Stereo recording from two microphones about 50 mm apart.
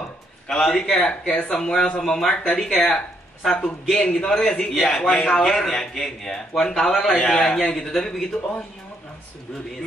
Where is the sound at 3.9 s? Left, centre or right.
Centre.